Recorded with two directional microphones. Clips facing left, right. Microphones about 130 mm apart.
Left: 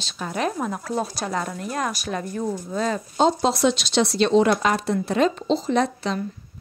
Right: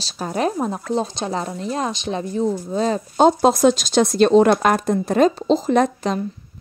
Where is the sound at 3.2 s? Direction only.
50° right (ahead or behind).